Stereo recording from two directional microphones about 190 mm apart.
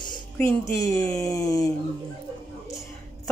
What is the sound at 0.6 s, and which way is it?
Speech, 15° left (ahead or behind).